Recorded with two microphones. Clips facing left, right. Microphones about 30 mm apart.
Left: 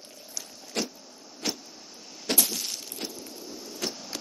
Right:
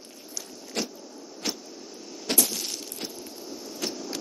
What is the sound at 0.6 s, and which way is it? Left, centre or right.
Vehicle, centre.